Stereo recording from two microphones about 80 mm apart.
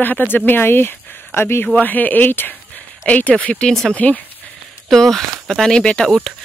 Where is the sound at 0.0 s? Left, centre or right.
Left.